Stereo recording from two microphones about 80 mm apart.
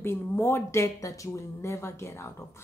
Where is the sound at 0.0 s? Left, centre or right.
Left.